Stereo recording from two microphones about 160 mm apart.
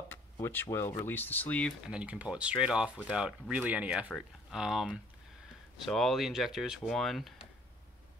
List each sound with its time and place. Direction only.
0.1 s speech: 15° left (ahead or behind)
1.9 s speech: 5° right (ahead or behind)